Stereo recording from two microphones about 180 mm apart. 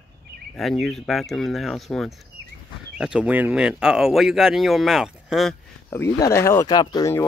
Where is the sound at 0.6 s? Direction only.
Centre (ahead or behind).